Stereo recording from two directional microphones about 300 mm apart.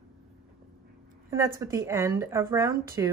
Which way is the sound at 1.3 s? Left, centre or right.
Centre.